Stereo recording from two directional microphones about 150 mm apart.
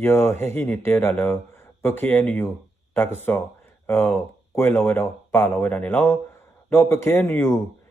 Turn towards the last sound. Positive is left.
turn(degrees=15)  # may be behind; listen again after turning